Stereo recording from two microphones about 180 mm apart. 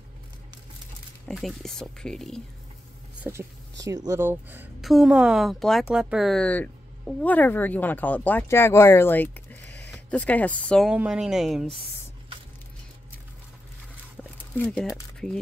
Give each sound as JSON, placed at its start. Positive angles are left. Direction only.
{"t": 1.2, "sound": "speech", "side_deg": 0}
{"t": 3.3, "sound": "speech", "side_deg": -15}
{"t": 10.9, "sound": "speech", "side_deg": -5}
{"t": 14.6, "sound": "speech", "side_deg": 5}